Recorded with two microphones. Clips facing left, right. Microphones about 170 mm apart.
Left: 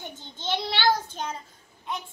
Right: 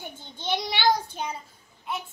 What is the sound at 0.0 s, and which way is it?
Child singing, 10° right (ahead or behind).